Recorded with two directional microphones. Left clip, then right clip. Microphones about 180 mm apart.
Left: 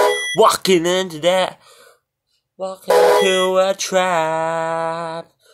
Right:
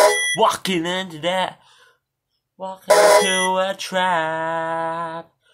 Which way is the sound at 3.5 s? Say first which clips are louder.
Left 5 dB; 25° left (ahead or behind).